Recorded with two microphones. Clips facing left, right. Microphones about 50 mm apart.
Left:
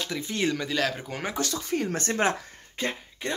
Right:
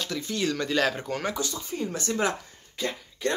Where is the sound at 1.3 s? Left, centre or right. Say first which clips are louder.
Left 3 dB; left.